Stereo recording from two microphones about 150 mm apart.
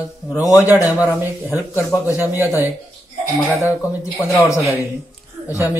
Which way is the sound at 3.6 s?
20° left (ahead or behind).